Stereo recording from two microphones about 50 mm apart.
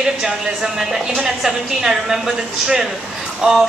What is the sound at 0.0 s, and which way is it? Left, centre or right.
A woman's voice, centre.